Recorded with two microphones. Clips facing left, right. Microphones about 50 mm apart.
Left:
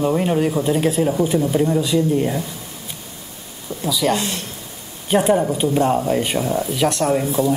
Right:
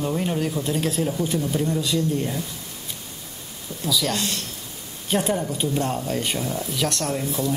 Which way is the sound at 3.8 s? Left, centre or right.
Centre.